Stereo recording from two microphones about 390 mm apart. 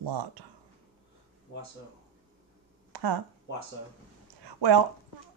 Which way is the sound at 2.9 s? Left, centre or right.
Right.